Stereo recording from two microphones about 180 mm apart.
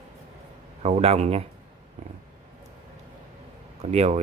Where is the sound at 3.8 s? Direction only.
40° right (ahead or behind).